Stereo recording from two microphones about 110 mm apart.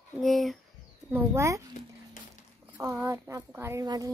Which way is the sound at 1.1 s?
25° right (ahead or behind).